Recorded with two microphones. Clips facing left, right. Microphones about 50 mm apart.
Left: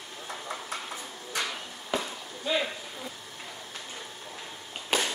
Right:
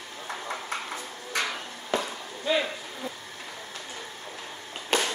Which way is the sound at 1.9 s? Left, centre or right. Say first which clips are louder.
Right 3 dB; centre.